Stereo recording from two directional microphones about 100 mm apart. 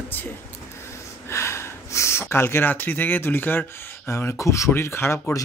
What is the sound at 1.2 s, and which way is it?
Speech, 25° left (ahead or behind).